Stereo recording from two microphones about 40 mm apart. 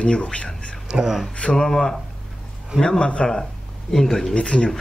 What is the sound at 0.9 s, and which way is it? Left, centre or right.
Speech, right.